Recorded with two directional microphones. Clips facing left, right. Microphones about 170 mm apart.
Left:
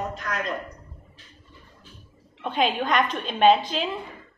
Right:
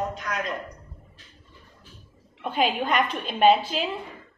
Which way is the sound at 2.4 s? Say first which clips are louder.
Even; 10° right (ahead or behind).